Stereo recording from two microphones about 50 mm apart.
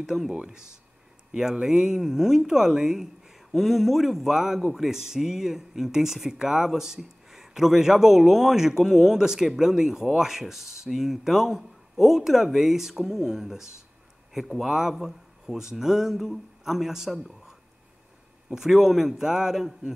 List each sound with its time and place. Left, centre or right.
0.0 s a man's voice: centre
0.3 s a man's voice: centre
18.5 s a man's voice: centre